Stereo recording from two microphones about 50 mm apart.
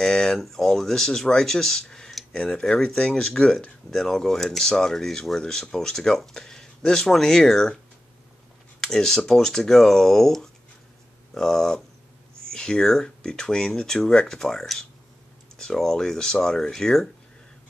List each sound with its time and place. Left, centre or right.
0.0 s speech: centre
8.8 s speech: centre